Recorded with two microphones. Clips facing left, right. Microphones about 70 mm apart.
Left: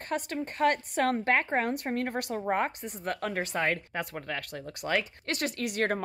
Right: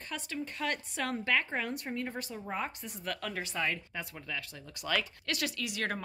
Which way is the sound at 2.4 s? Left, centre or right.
Left.